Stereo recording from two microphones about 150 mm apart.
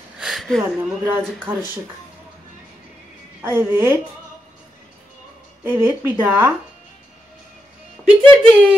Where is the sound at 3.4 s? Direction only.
15° right (ahead or behind).